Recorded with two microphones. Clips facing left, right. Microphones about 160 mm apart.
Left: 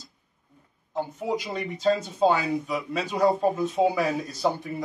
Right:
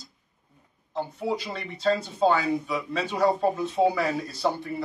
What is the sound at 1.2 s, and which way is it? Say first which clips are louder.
Speech: left 1 dB; 15° left (ahead or behind).